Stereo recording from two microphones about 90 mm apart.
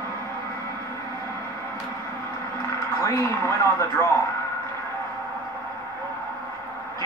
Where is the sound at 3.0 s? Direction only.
35° left (ahead or behind).